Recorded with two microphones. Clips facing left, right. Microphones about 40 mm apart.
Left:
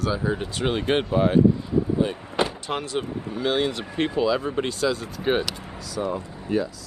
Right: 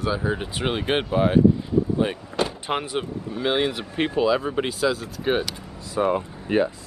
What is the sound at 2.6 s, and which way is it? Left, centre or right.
Speech, right.